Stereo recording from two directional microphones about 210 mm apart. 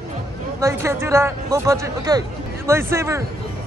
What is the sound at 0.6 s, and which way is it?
Speech, 15° right (ahead or behind).